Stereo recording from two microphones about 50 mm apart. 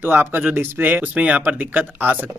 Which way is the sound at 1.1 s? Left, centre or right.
Right.